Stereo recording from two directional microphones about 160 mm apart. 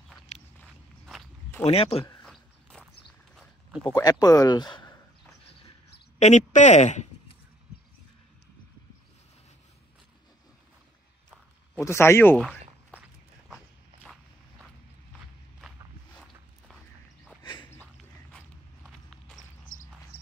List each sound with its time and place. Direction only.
1.6 s a man's voice: 40° left (ahead or behind)
2.2 s walk: 5° left (ahead or behind)
3.9 s speech: 20° left (ahead or behind)
6.1 s speech: 45° left (ahead or behind)
11.8 s speech: 15° left (ahead or behind)
12.4 s walk: 5° right (ahead or behind)
17.4 s a sound: 25° left (ahead or behind)
19.4 s walk: 55° left (ahead or behind)